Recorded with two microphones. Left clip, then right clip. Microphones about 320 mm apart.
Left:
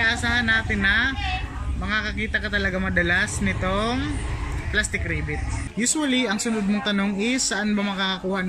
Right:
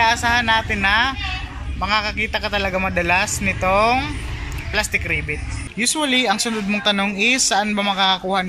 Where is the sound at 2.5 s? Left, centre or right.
Right.